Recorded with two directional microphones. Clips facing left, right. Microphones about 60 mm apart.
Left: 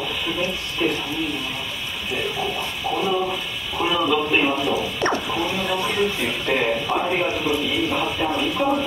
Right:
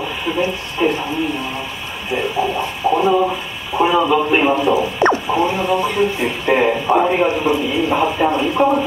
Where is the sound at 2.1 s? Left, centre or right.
Right.